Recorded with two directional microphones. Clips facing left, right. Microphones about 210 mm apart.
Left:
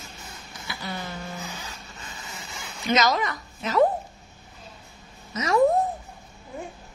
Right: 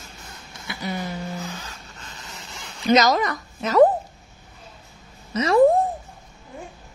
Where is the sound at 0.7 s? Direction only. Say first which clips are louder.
Right 5 dB; 20° right (ahead or behind).